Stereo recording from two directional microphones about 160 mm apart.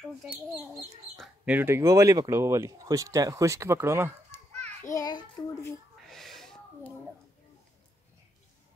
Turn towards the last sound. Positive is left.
turn(degrees=5)  # may be behind; listen again after turning